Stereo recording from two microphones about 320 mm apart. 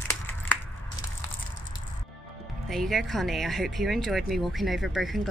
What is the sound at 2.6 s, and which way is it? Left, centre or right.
Speech, centre.